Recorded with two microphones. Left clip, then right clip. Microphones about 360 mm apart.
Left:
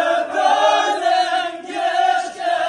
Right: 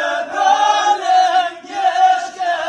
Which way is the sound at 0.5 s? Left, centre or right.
Centre.